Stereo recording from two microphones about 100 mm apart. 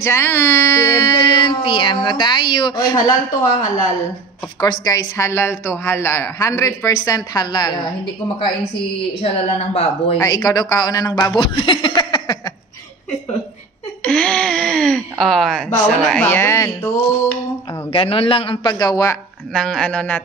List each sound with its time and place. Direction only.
0.0 s speech: 25° left (ahead or behind)
0.8 s a woman's voice: 45° left (ahead or behind)
9.2 s speech: 85° left
10.2 s a woman's voice: 40° left (ahead or behind)
11.2 s speech: 50° left (ahead or behind)
14.0 s speech: 10° left (ahead or behind)
16.3 s speech: 20° left (ahead or behind)
16.5 s a woman's voice: 35° left (ahead or behind)
17.9 s a man's voice: 70° left (ahead or behind); by 19.0 s 40° left (ahead or behind)
19.5 s speech: 5° left (ahead or behind)